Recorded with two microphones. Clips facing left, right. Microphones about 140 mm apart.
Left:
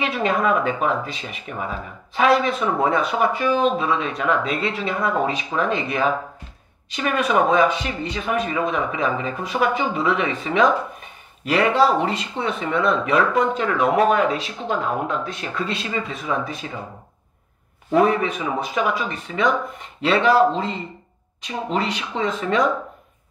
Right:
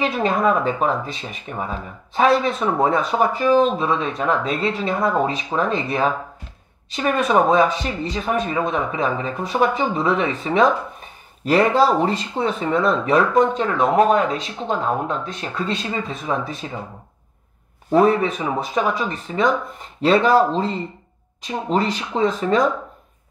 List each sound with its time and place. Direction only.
0.4 s speech: 35° right (ahead or behind)
7.2 s speech: 35° right (ahead or behind)
17.9 s speech: 35° right (ahead or behind)